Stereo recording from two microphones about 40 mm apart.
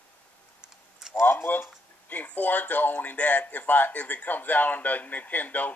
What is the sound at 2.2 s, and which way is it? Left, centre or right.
Speech, left.